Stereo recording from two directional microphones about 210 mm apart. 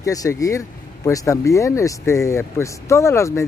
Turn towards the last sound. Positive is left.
turn(degrees=15)  # may be behind; listen again after turning